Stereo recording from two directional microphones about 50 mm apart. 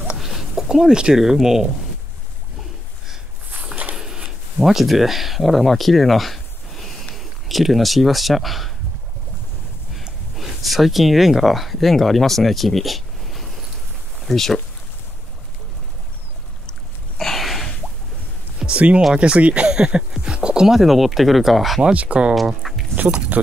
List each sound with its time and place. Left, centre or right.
0.2 s speech: centre
3.9 s a sound: centre
4.6 s speech: centre
10.3 s speech: centre
17.2 s a sound: centre
18.6 s a sound: right
19.1 s speech: right
20.6 s speech: centre
21.9 s speech: right
22.3 s speech: centre
22.9 s speech: right